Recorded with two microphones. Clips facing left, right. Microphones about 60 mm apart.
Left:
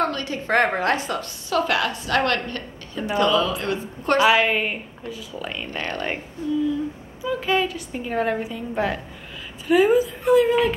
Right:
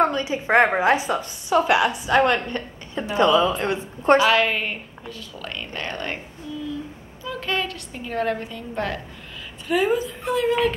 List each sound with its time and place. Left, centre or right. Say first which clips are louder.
0.0 s a woman's voice: right 3 dB; centre
4.2 s a woman's voice: left 1 dB; centre
7.2 s a woman's voice: left 4 dB; centre